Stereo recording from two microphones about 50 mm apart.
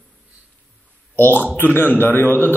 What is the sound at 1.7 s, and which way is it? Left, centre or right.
Speech, left.